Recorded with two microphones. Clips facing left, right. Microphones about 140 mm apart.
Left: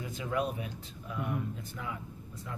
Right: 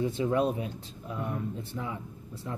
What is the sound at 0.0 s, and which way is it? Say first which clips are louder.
Speech: right 7 dB; 30° right (ahead or behind).